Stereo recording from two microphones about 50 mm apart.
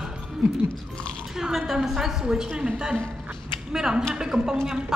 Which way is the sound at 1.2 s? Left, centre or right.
Centre.